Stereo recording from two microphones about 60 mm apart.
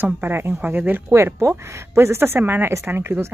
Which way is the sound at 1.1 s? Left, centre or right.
Right.